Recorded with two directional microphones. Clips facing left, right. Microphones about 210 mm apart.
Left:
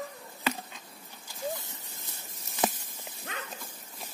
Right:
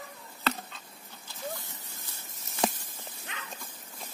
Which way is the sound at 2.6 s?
Centre (ahead or behind).